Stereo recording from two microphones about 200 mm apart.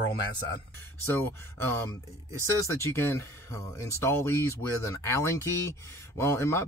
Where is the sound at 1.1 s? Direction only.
10° left (ahead or behind).